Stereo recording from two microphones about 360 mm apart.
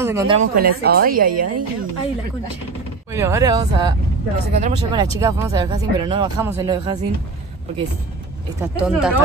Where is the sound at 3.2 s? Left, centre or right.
Centre.